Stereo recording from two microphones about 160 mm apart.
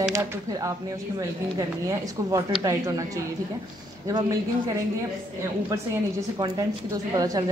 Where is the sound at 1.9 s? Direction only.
20° right (ahead or behind).